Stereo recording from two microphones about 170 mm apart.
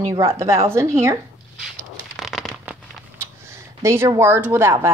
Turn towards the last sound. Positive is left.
turn(degrees=-15)  # may be behind; listen again after turning